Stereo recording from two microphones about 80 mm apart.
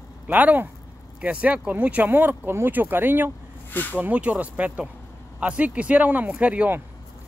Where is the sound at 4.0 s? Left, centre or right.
Centre.